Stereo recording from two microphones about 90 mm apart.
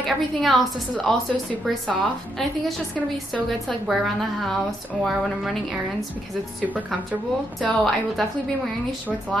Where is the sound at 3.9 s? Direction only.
Centre (ahead or behind).